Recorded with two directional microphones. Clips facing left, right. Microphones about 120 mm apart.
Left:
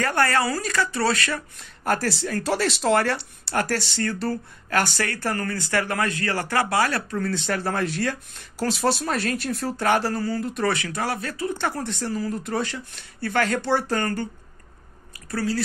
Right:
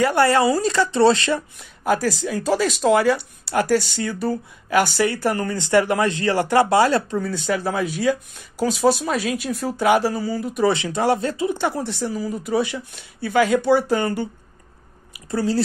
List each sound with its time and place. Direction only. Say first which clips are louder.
0.0 s speech: right 6 dB; 15° right (ahead or behind)
1.6 s speech: even; centre (ahead or behind); by 7.2 s 20° right (ahead or behind)
7.4 s speech: right 3 dB; 5° right (ahead or behind)
10.7 s speech: right 7 dB; 20° right (ahead or behind)
15.3 s speech: right 5 dB; 25° right (ahead or behind)